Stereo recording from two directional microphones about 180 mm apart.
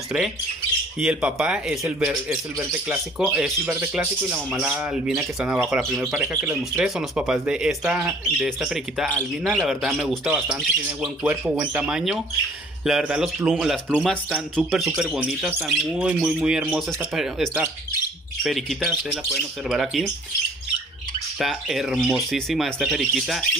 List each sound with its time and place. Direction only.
0.9 s speech: 5° right (ahead or behind)
21.4 s speech: centre (ahead or behind)